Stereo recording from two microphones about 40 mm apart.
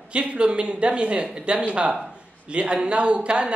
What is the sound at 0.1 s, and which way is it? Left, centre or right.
Speech, right.